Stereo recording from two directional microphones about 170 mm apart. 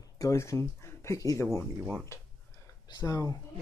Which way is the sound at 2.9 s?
20° left (ahead or behind).